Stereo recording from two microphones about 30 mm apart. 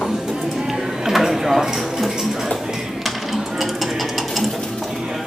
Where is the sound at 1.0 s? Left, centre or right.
Centre.